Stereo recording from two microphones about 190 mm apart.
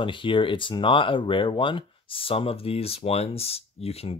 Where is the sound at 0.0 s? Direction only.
25° left (ahead or behind).